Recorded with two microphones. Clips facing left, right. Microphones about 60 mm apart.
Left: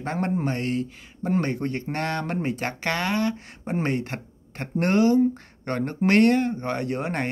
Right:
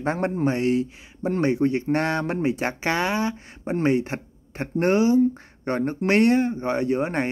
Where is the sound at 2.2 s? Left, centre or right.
Centre.